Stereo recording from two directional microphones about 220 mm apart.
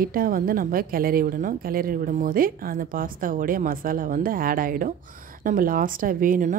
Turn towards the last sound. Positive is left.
turn(degrees=-35)  # may be behind; listen again after turning